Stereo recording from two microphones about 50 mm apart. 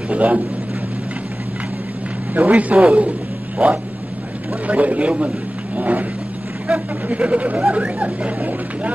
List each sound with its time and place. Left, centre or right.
0.1 s speech: right
2.3 s a man's voice: right
5.8 s vehicle: right
6.7 s speech: right